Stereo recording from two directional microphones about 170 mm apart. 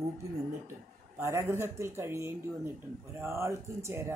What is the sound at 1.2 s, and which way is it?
Speech, 15° right (ahead or behind).